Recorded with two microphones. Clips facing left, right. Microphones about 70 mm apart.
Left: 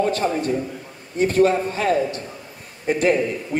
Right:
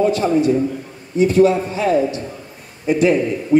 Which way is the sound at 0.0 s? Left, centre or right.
Left.